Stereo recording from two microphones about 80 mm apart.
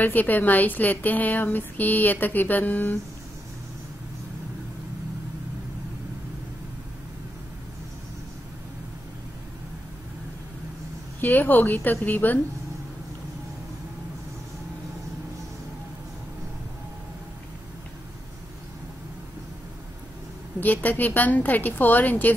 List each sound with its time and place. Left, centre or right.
0.0 s a woman's voice: left
11.1 s a woman's voice: left
20.6 s a woman's voice: left